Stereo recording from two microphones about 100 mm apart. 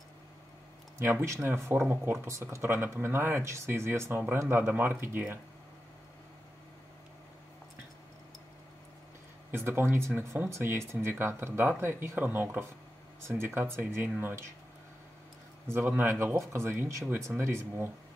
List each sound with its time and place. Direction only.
1.2 s speech: 25° right (ahead or behind)
9.5 s speech: 25° right (ahead or behind)
15.7 s speech: 20° right (ahead or behind)